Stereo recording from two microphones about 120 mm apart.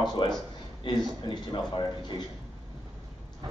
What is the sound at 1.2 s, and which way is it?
Speech, 40° left (ahead or behind).